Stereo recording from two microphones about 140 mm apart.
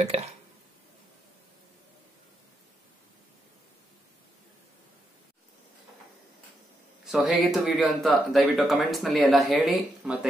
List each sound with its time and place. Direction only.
0.0 s speech: 50° right (ahead or behind)
7.1 s speech: 5° right (ahead or behind)